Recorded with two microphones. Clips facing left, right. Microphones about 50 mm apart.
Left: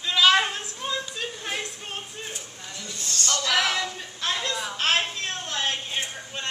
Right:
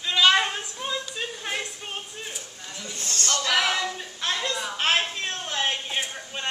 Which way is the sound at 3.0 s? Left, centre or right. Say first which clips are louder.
Right 1 dB; right.